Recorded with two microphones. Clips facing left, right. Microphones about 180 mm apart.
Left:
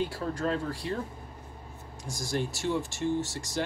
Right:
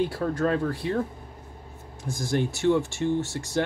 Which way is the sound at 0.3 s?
60° right (ahead or behind).